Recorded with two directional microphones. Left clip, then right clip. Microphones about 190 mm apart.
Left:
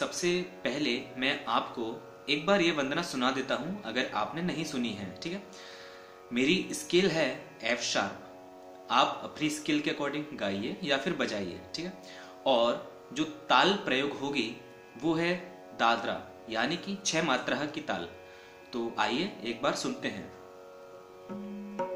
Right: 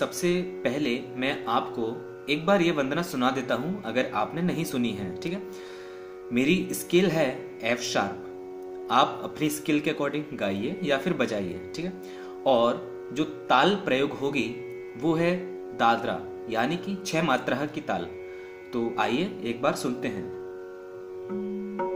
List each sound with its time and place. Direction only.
0.0 s speech: 30° right (ahead or behind)